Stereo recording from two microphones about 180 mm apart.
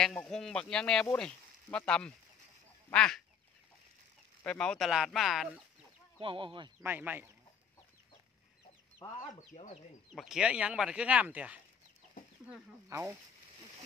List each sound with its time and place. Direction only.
0.0 s speech: 5° left (ahead or behind)
2.9 s duck: 5° left (ahead or behind)
4.4 s speech: 5° left (ahead or behind)
6.1 s speech: 30° right (ahead or behind)
6.8 s speech: 10° right (ahead or behind)
9.5 s speech: 35° left (ahead or behind)
10.1 s speech: 5° right (ahead or behind)